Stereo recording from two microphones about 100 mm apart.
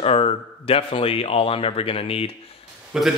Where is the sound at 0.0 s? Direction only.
75° left (ahead or behind).